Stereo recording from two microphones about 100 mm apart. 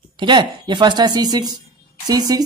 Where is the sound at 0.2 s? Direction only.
50° right (ahead or behind).